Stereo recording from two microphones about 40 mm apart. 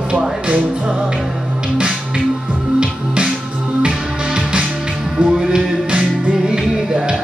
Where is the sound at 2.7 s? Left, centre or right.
Right.